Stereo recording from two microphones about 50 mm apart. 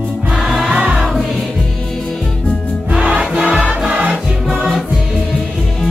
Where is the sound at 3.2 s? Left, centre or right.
Centre.